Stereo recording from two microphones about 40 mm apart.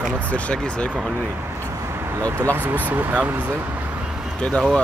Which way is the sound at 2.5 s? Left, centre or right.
Right.